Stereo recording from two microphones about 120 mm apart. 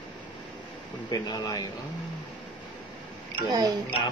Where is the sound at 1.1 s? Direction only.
35° left (ahead or behind).